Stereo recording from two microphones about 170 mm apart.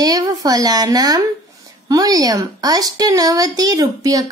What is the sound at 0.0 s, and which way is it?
A woman's voice, 20° right (ahead or behind).